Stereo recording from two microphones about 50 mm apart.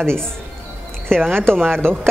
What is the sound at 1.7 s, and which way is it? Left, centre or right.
Speech, right.